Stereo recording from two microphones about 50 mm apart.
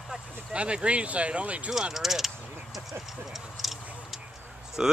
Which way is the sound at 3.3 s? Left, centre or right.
Centre.